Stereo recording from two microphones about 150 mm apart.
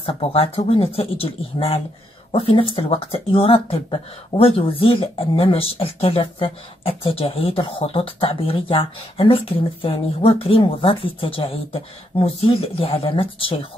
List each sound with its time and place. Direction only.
0.0 s speech: 40° left (ahead or behind)